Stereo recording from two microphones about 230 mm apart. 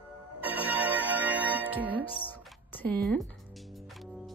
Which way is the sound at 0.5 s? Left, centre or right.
Centre.